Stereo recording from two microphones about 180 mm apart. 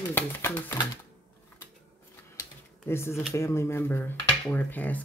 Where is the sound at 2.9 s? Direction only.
15° left (ahead or behind).